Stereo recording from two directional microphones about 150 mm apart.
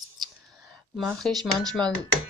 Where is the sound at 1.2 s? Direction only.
5° left (ahead or behind).